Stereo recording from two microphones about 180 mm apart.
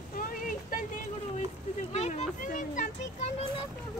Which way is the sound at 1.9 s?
35° left (ahead or behind).